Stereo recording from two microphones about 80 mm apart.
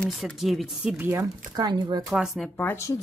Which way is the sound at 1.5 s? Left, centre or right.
Right.